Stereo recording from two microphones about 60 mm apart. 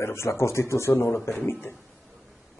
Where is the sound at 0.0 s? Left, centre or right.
Left.